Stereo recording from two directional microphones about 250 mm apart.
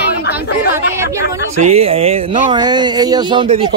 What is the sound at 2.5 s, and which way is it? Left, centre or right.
Speech, centre.